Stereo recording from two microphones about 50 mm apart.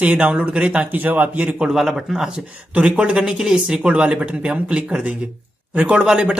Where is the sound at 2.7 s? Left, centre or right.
Right.